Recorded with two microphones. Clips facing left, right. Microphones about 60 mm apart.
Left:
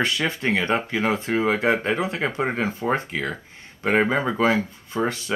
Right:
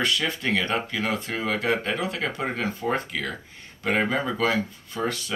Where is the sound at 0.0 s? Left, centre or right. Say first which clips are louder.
Left 2 dB; left.